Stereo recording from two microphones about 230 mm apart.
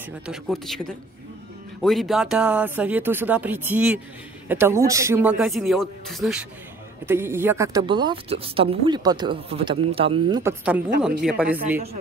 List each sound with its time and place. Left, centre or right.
0.3 s a man's voice: centre; by 10.4 s right
10.4 s a man's voice: centre